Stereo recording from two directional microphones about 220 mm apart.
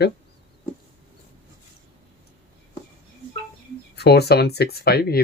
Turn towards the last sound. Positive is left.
turn(degrees=45)  # may be behind; listen again after turning